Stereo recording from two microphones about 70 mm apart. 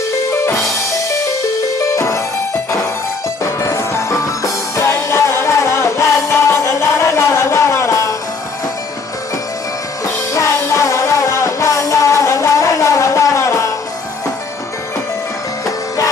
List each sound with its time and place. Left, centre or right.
0.3 s music: left
1.8 s music: left
3.4 s music: left
10.3 s music: left